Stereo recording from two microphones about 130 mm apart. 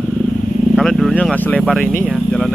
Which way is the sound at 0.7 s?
Centre (ahead or behind).